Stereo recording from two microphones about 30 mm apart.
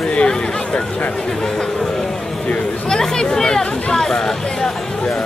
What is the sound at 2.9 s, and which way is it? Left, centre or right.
Chatter, centre.